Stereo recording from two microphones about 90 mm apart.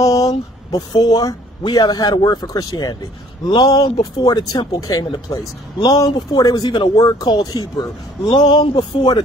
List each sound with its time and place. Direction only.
0.0 s speech: 40° left (ahead or behind)
8.4 s speech: 60° left (ahead or behind)